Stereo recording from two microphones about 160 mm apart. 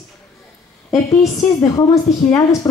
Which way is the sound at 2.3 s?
25° left (ahead or behind).